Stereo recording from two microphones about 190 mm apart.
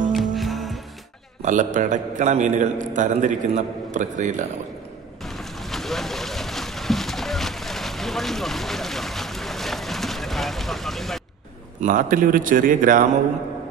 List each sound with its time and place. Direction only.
0.1 s music: centre (ahead or behind)
1.4 s a man's voice: 40° right (ahead or behind)
5.2 s boat: centre (ahead or behind)
11.8 s a man's voice: 45° right (ahead or behind)